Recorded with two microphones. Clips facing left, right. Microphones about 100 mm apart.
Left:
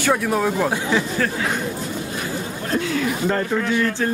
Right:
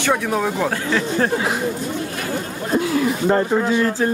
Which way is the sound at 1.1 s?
30° right (ahead or behind).